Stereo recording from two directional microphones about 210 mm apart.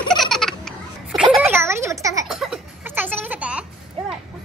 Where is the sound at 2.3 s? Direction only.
Centre (ahead or behind).